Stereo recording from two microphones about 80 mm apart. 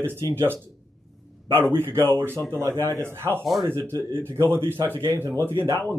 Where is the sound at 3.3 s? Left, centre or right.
Right.